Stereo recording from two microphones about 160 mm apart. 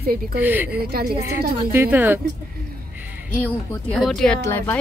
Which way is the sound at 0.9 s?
70° right (ahead or behind).